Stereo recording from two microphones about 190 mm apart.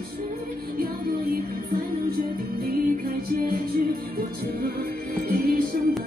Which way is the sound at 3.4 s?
50° right (ahead or behind).